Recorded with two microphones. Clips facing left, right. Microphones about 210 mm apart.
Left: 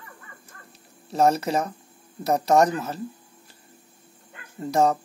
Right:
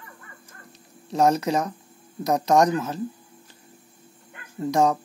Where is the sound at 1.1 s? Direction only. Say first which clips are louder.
Even; centre (ahead or behind).